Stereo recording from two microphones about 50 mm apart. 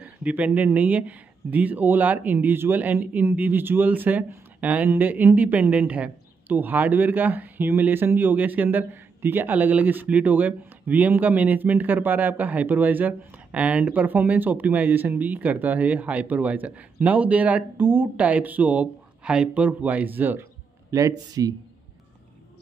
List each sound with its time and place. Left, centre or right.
0.0 s speech: right
17.7 s speech: right
18.1 s speech: right
20.9 s speech: right